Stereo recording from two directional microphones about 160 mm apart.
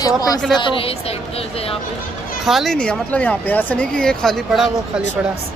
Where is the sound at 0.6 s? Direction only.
35° left (ahead or behind).